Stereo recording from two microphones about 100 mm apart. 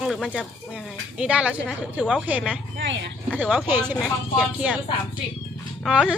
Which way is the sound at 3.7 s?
20° right (ahead or behind).